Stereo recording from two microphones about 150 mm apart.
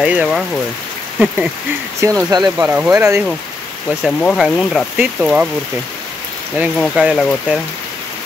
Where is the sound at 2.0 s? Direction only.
20° right (ahead or behind).